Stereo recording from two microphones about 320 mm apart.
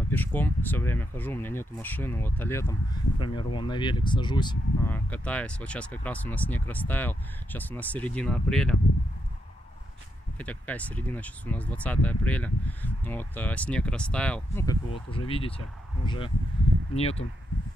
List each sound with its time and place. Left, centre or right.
0.1 s speech: centre
10.4 s speech: centre
16.9 s speech: centre